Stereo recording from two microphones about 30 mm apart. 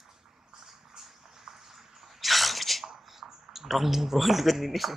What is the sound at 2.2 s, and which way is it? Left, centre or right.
Sneeze, centre.